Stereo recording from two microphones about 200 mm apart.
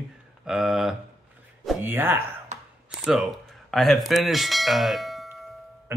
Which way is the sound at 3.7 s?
Centre (ahead or behind).